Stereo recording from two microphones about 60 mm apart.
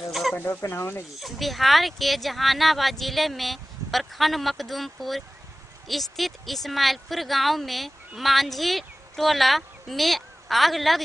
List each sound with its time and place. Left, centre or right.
0.1 s chicken: centre
0.4 s speech: left
1.2 s speech: centre